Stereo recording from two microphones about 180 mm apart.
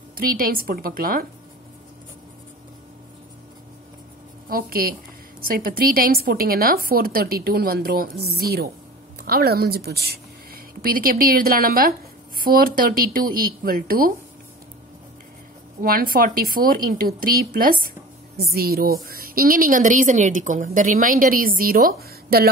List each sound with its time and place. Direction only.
0.2 s a woman's voice: 55° right (ahead or behind)
4.5 s a woman's voice: 55° right (ahead or behind)
15.8 s a woman's voice: 55° right (ahead or behind)